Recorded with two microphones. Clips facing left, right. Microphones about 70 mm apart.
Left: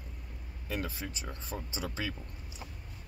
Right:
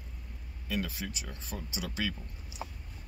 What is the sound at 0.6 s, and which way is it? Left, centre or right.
Speech, left.